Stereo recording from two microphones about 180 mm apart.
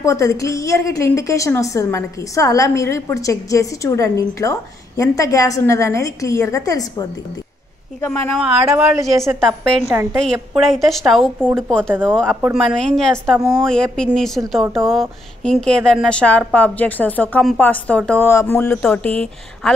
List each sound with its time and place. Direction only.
0.0 s a woman's voice: 15° left (ahead or behind)
8.7 s a woman's voice: 10° right (ahead or behind)
10.2 s a woman's voice: centre (ahead or behind)
12.5 s a woman's voice: centre (ahead or behind)